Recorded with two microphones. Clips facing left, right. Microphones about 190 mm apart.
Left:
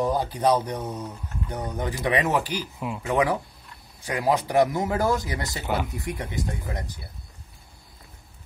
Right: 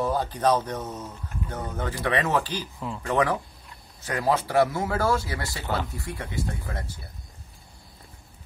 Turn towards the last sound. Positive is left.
turn(degrees=15)  # may be behind; listen again after turning